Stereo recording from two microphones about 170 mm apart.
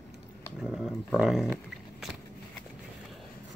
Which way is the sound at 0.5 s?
Centre (ahead or behind).